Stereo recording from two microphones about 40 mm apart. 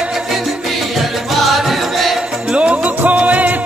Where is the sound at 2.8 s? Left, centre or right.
Right.